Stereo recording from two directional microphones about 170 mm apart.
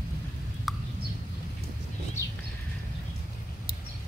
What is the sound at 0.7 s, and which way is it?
Bird, centre (ahead or behind).